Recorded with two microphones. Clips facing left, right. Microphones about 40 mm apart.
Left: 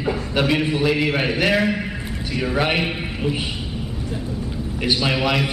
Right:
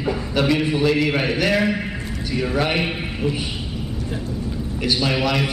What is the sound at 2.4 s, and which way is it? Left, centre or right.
Speech, centre.